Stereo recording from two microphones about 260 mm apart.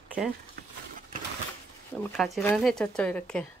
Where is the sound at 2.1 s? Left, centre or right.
Centre.